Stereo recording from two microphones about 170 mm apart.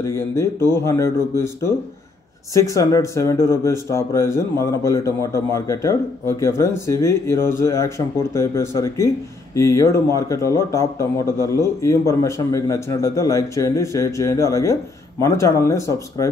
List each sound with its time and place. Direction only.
0.0 s speech: 15° left (ahead or behind)